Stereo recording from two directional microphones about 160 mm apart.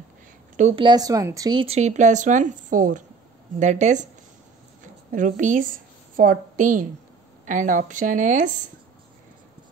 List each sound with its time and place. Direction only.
0.7 s a woman's voice: 25° right (ahead or behind); by 4.1 s 50° right (ahead or behind)
5.1 s a woman's voice: 50° right (ahead or behind)